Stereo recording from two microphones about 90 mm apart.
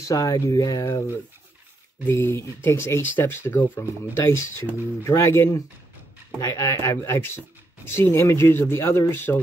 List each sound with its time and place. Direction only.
0.1 s speech: 40° left (ahead or behind)
2.0 s speech: 30° left (ahead or behind)